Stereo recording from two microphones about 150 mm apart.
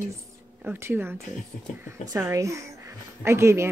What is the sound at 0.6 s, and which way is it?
Speech, 15° right (ahead or behind).